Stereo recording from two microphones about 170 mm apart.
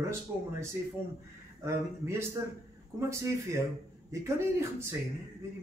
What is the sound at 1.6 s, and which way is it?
A man's voice, 15° right (ahead or behind).